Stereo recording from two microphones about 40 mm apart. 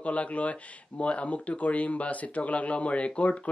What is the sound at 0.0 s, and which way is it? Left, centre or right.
Speech, left.